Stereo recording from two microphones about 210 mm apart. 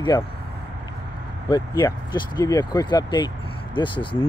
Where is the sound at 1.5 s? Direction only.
15° left (ahead or behind).